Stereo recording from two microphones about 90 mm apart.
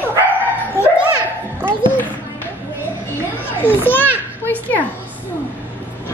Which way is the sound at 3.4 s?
20° left (ahead or behind).